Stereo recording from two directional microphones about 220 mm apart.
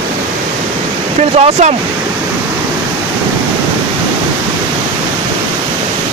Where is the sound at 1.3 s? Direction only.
30° right (ahead or behind).